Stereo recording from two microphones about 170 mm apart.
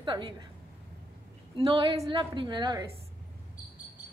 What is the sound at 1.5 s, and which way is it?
A woman's voice, 30° right (ahead or behind).